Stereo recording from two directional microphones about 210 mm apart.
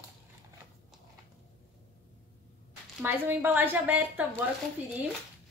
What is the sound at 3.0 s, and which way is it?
A woman's voice, 10° right (ahead or behind).